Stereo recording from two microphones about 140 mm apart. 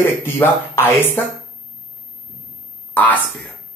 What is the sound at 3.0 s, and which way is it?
Speech, 10° left (ahead or behind).